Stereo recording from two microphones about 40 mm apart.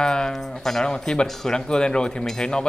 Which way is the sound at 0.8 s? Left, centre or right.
Centre.